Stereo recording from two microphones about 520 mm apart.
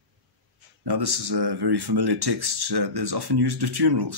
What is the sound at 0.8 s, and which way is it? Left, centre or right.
Speech, right.